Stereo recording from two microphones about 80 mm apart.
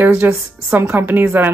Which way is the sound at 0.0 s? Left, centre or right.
Right.